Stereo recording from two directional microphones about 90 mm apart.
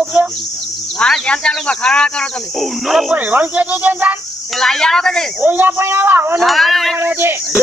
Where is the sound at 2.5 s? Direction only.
Centre (ahead or behind).